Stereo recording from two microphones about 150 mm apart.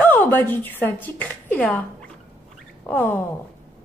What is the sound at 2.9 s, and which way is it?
Speech, 10° left (ahead or behind).